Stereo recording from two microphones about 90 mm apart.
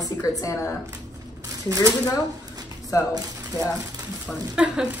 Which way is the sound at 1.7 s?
35° right (ahead or behind).